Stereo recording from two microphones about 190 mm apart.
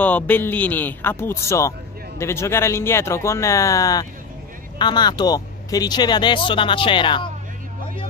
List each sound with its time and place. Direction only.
0.0 s speech: 10° left (ahead or behind); by 7.2 s 25° left (ahead or behind)